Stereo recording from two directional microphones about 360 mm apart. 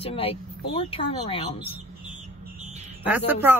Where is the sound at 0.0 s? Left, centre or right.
Centre.